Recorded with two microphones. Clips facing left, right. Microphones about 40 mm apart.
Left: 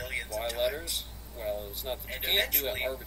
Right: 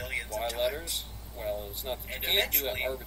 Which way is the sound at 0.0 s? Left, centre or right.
Right.